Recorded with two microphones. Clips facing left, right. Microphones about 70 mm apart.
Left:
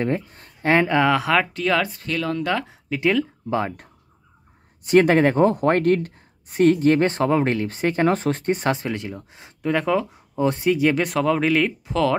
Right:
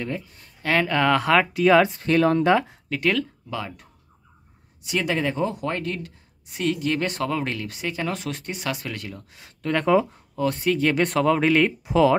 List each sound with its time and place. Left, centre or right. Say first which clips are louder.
0.0 s speech: left 7 dB; left
0.9 s speech: left 1 dB; centre
1.8 s speech: right 6 dB; right
2.6 s speech: left 2 dB; centre
3.0 s speech: left 3 dB; centre
3.4 s speech: left 8 dB; left
4.8 s speech: left 9 dB; left
9.7 s speech: even; centre
10.3 s speech: left 3 dB; left
10.7 s speech: even; centre